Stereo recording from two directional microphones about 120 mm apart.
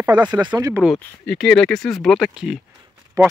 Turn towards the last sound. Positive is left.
turn(degrees=-30)  # may be behind; listen again after turning